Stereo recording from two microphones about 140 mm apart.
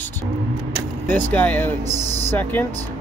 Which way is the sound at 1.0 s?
10° left (ahead or behind).